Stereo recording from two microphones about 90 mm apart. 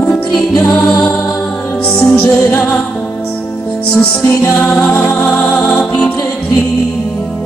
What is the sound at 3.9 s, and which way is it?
Music, 25° left (ahead or behind).